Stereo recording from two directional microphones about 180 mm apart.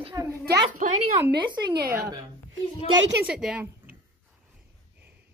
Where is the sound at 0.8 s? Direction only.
45° right (ahead or behind).